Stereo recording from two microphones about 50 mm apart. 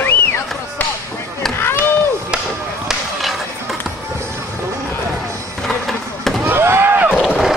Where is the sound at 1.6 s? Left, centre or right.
Left.